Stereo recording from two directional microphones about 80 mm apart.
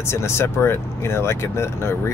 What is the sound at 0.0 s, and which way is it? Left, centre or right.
Speech, left.